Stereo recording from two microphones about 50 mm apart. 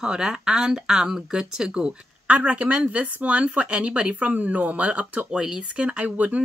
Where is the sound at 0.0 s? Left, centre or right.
Centre.